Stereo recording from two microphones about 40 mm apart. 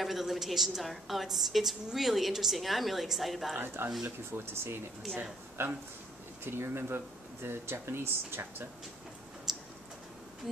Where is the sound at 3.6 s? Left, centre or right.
Right.